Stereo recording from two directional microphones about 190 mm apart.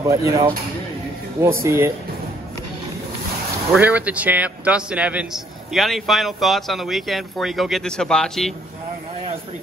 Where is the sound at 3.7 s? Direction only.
5° right (ahead or behind).